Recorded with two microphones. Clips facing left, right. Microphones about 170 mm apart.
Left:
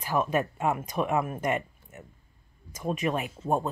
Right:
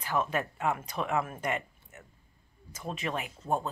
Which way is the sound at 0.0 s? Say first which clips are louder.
Left 4 dB; 15° left (ahead or behind).